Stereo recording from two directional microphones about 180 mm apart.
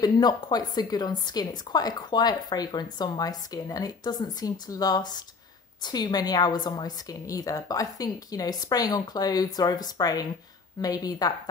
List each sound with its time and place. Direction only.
0.0 s a woman's voice: 20° left (ahead or behind)